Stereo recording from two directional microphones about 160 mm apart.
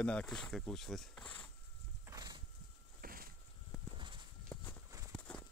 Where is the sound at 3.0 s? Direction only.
65° right (ahead or behind).